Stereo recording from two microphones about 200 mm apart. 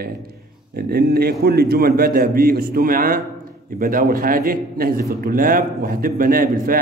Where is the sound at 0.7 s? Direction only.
50° right (ahead or behind).